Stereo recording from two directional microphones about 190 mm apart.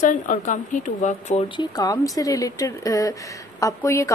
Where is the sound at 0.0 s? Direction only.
40° left (ahead or behind).